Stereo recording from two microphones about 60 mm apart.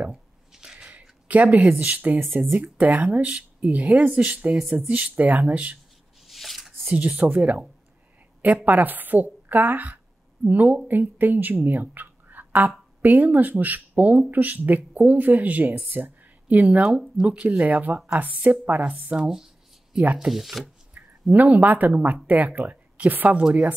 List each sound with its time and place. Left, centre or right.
0.1 s a sound: centre
0.8 s speech: right
6.2 s shuffling cards: centre
6.8 s speech: right
8.6 s a woman's voice: right
16.7 s speech: centre
19.2 s a sound: centre
20.0 s speech: right
20.2 s speech: centre
20.9 s speech: right